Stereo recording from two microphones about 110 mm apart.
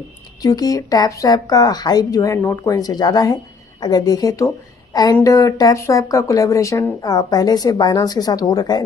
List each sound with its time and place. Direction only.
0.4 s speech: 35° left (ahead or behind)